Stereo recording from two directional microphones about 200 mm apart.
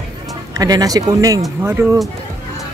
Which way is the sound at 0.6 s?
20° right (ahead or behind).